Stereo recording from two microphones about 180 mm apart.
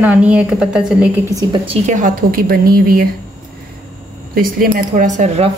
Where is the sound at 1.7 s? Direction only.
40° right (ahead or behind).